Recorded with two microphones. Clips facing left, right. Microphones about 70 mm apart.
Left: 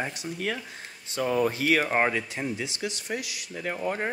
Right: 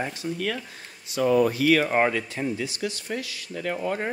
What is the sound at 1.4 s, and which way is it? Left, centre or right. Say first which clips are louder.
Speech: right 1 dB; left.